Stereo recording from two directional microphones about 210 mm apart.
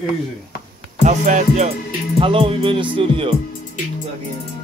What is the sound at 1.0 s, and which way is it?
Music, 35° right (ahead or behind).